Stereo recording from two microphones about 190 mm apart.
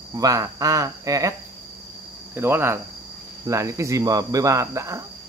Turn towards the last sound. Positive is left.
turn(degrees=-15)  # may be behind; listen again after turning